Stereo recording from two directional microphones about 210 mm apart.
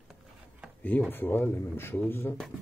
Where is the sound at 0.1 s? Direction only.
5° left (ahead or behind).